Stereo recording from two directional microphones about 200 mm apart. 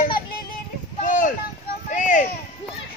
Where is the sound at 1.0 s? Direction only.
40° left (ahead or behind).